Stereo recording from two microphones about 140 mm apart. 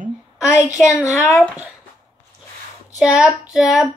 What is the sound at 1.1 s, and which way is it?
Speech, 20° left (ahead or behind).